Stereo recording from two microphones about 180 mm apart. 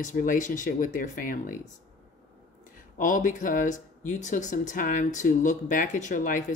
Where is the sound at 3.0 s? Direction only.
45° left (ahead or behind).